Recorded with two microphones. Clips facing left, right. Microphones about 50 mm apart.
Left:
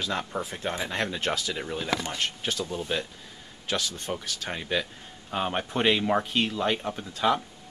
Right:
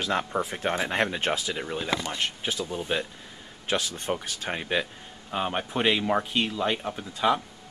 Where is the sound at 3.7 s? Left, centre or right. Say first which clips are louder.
Right 2 dB; right.